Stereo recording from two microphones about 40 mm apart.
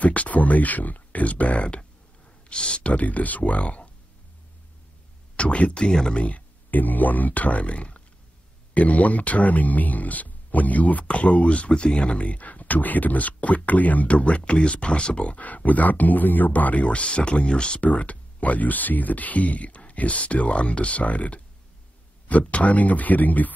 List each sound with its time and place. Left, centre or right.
0.0 s speech: left
2.5 s speech: left
2.9 s speech: left
5.3 s speech: left
5.9 s speech: centre
6.1 s speech: left
15.3 s speech: left
16.8 s speech: left
17.7 s speech: left
22.5 s speech: left